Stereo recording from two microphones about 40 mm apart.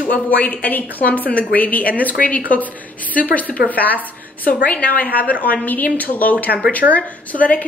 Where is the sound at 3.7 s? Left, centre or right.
Left.